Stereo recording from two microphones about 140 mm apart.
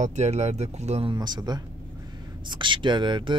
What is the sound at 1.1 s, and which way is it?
Speech, 30° right (ahead or behind).